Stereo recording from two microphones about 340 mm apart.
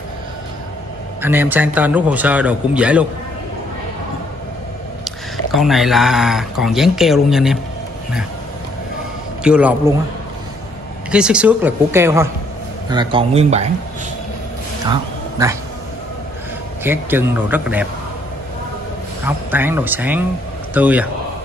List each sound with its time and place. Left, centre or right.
1.2 s a man's voice: centre
5.0 s speech: centre
9.4 s a man's voice: centre
11.1 s a man's voice: centre
14.9 s a sound: centre
16.8 s a man's voice: centre
19.2 s a man's voice: centre